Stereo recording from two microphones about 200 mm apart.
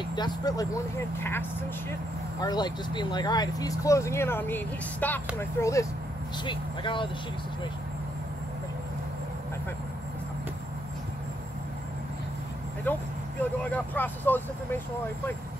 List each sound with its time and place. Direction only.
0.1 s speech: 20° left (ahead or behind)
2.4 s speech: 20° left (ahead or behind)
12.9 s speech: 10° left (ahead or behind)